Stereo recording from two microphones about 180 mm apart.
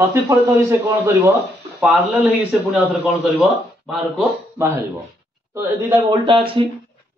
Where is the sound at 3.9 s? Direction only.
10° right (ahead or behind).